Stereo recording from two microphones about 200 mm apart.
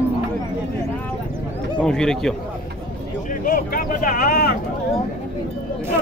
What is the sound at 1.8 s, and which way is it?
Speech, 5° left (ahead or behind).